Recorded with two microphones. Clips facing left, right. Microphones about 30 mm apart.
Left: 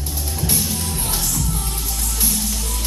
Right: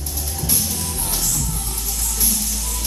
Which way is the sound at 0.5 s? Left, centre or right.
Centre.